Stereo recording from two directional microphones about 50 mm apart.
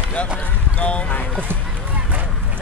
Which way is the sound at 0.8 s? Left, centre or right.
Left.